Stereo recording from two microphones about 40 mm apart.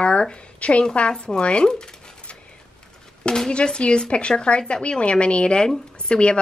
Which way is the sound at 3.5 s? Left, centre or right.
Left.